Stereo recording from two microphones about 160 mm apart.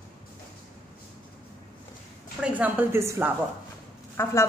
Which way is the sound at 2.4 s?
10° right (ahead or behind).